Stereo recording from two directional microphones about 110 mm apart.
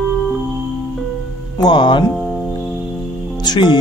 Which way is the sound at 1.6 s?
45° left (ahead or behind).